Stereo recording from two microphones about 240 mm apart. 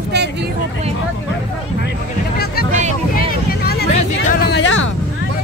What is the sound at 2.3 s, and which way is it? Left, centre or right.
Music, left.